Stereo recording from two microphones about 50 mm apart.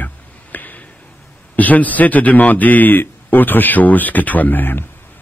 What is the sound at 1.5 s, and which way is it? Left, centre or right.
A man's voice, left.